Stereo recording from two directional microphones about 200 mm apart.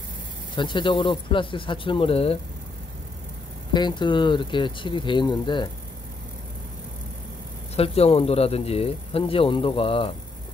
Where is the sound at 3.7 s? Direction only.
20° left (ahead or behind).